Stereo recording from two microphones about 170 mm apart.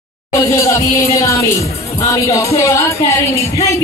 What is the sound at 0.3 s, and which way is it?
Speech, 15° left (ahead or behind).